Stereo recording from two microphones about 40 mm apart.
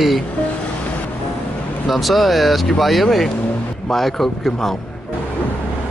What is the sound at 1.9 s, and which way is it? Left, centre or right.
Speech, centre.